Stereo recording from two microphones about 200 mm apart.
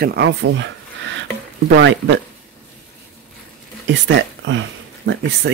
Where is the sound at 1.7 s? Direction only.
70° right (ahead or behind).